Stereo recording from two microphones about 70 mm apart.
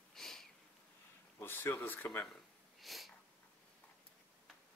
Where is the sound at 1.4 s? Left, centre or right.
Left.